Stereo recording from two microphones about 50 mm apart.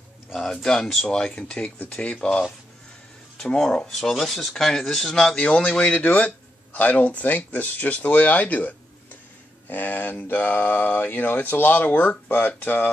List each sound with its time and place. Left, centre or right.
0.3 s speech: centre; by 12.8 s left